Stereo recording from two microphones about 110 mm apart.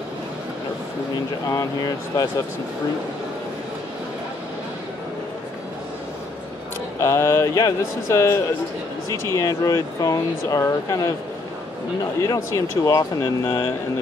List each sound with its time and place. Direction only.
1.5 s speech: 35° left (ahead or behind)
7.0 s speech: 25° left (ahead or behind)
12.2 s speech: 30° left (ahead or behind)